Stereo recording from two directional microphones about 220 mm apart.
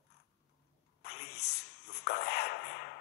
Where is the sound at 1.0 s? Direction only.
50° left (ahead or behind).